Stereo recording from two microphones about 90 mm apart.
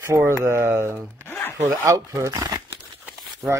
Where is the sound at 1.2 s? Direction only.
25° left (ahead or behind).